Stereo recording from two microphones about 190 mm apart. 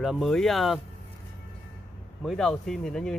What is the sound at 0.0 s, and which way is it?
Speech, centre (ahead or behind).